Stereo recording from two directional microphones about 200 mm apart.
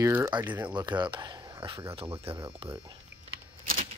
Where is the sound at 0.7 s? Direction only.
20° right (ahead or behind).